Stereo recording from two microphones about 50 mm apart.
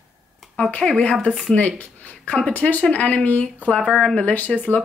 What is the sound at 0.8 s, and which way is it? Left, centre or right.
Speech, left.